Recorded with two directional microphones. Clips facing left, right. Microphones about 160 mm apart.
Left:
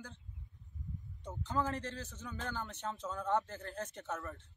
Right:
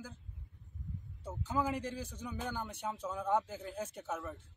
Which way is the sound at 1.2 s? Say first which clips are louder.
Right 1 dB; 10° right (ahead or behind).